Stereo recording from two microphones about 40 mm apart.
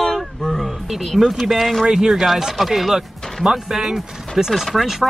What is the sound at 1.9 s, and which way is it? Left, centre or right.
Speech, centre.